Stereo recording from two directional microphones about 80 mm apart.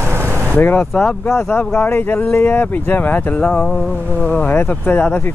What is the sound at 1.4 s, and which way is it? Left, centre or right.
Speech, centre.